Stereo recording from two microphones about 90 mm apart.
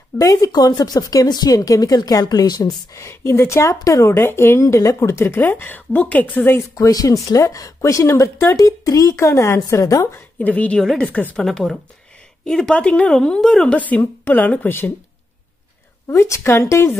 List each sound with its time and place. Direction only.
0.2 s speech: 40° left (ahead or behind); by 6.6 s 20° left (ahead or behind)
6.7 s speech: 45° left (ahead or behind)
10.1 s a woman's voice: 20° left (ahead or behind)
10.8 s speech: 5° left (ahead or behind)
11.1 s a woman's voice: 15° left (ahead or behind)
11.4 s a woman's voice: 5° left (ahead or behind)
13.7 s a woman's voice: 20° left (ahead or behind)
16.1 s speech: 30° left (ahead or behind)